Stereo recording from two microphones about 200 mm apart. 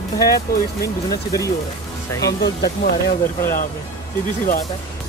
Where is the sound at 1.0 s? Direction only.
15° left (ahead or behind).